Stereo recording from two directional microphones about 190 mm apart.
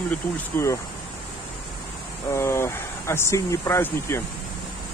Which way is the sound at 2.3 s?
15° left (ahead or behind).